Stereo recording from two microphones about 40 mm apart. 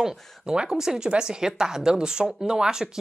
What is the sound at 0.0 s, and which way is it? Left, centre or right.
Speech, right.